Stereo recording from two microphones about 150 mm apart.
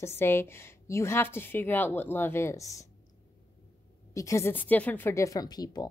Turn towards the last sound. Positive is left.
turn(degrees=25)  # may be behind; listen again after turning